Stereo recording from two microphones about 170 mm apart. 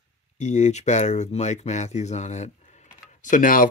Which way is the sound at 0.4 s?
45° left (ahead or behind).